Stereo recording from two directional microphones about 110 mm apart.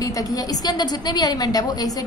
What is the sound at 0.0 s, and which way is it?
A woman's voice, 35° left (ahead or behind).